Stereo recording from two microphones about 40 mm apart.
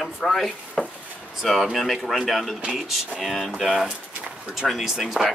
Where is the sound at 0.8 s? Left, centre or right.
Centre.